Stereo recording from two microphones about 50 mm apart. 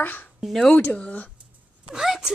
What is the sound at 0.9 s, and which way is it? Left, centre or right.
Speech, left.